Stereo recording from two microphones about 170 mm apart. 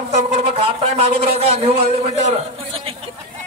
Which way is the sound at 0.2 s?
35° right (ahead or behind).